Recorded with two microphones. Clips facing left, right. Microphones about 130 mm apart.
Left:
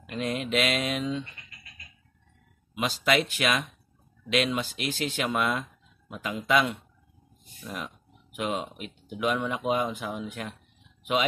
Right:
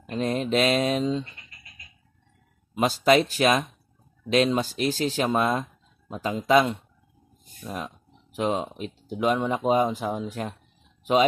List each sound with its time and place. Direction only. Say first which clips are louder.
0.0 s speech: right 4 dB; 35° right (ahead or behind)
2.7 s speech: right 6 dB; 45° right (ahead or behind)